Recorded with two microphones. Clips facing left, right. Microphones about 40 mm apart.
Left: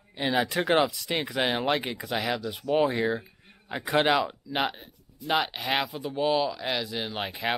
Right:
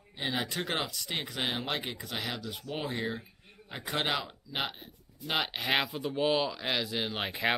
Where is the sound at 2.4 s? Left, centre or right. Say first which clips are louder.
Left 9 dB; centre.